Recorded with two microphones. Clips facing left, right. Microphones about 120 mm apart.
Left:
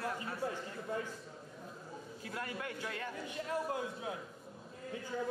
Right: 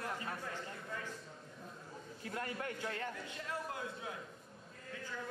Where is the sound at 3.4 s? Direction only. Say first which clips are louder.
Left 7 dB; 30° left (ahead or behind).